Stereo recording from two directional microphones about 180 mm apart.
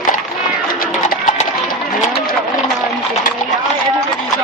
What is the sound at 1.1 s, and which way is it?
Music, 45° left (ahead or behind).